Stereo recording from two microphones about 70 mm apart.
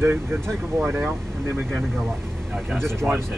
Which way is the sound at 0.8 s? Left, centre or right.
Right.